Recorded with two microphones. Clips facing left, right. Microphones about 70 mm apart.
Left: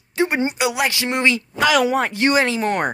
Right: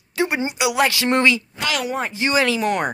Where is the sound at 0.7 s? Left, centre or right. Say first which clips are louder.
Right 3 dB; centre.